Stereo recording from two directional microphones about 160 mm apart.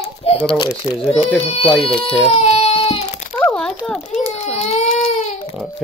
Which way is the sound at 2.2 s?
40° left (ahead or behind).